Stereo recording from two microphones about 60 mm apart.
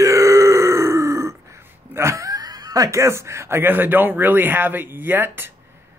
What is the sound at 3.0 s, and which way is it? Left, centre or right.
Speech, right.